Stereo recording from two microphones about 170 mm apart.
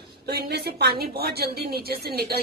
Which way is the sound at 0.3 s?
70° right (ahead or behind).